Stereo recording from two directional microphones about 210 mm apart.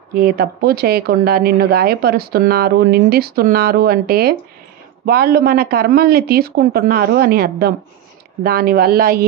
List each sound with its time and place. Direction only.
0.1 s speech: 45° right (ahead or behind)